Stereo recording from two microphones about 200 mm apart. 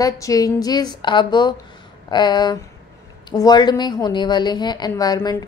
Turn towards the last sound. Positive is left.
turn(degrees=20)  # may be behind; listen again after turning